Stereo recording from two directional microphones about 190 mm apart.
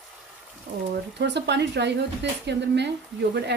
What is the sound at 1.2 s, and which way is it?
Speech, 65° right (ahead or behind).